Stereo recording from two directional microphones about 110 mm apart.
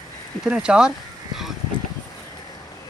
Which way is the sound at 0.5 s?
5° right (ahead or behind).